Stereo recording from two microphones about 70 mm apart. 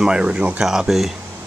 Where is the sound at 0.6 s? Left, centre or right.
Centre.